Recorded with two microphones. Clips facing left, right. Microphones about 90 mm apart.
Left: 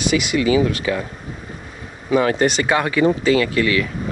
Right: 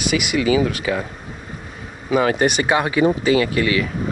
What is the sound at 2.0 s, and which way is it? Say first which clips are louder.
Speech: left 1 dB; 15° right (ahead or behind).